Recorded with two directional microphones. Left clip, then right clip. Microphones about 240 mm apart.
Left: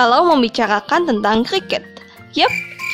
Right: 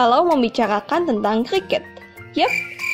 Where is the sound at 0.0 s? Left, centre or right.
Centre.